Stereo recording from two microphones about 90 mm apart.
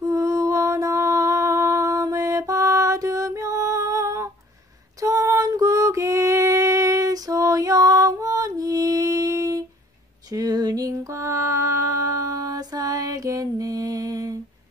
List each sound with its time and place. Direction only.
0.0 s mantra: 40° right (ahead or behind)
5.0 s female singing: 35° right (ahead or behind)
10.3 s mantra: 45° right (ahead or behind)